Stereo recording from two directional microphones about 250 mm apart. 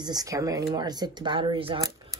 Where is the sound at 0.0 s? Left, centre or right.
Centre.